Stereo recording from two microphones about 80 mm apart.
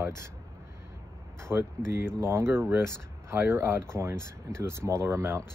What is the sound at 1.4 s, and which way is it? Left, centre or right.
Speech, right.